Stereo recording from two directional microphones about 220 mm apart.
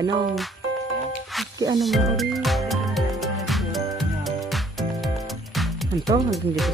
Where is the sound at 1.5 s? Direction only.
15° right (ahead or behind).